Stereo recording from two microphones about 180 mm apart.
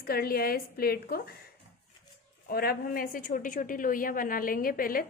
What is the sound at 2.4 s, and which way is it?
A woman's voice, 60° left (ahead or behind).